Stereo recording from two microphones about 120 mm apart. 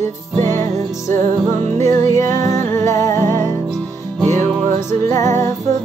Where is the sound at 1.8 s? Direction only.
25° left (ahead or behind).